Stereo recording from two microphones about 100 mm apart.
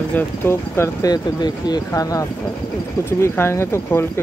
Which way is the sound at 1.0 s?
45° left (ahead or behind).